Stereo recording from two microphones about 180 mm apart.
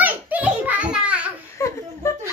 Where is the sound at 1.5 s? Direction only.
15° left (ahead or behind).